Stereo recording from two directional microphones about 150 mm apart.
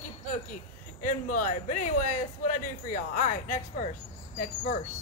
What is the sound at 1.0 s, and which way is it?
A man's voice, 60° left (ahead or behind).